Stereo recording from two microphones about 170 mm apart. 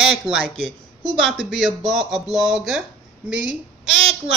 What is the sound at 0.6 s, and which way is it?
Speech, 30° right (ahead or behind).